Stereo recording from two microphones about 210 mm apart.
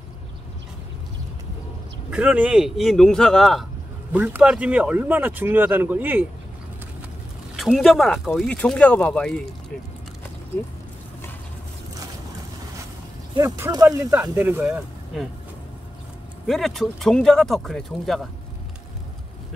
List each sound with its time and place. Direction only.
2.0 s speech: 5° right (ahead or behind)
7.5 s speech: centre (ahead or behind)
13.4 s speech: 15° right (ahead or behind)
16.4 s speech: centre (ahead or behind)